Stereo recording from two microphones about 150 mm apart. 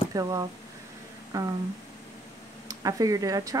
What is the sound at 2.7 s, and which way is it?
Speech, 25° right (ahead or behind).